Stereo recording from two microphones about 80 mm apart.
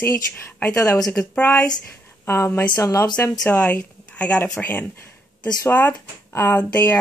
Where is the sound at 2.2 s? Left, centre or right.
Left.